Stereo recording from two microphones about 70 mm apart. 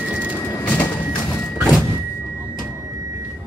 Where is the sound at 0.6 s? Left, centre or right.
Left.